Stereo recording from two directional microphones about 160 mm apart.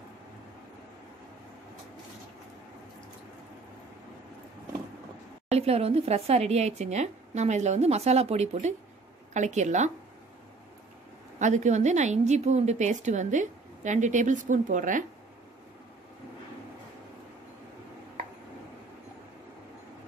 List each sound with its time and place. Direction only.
5.5 s a woman's voice: 40° right (ahead or behind)
11.3 s a woman's voice: 50° right (ahead or behind)